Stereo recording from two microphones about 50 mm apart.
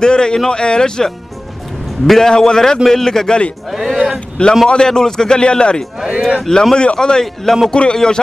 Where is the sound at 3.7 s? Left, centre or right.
Centre.